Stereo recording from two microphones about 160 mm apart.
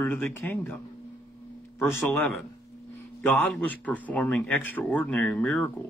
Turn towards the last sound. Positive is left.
turn(degrees=10)  # may be behind; listen again after turning